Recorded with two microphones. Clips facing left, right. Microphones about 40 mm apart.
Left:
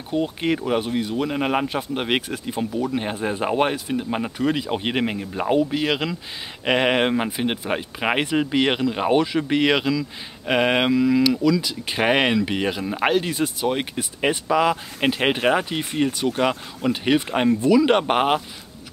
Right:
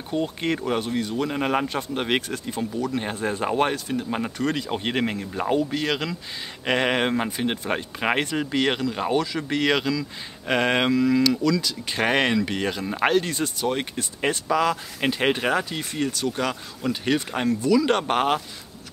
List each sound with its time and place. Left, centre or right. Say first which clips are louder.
0.1 s speech: left 3 dB; centre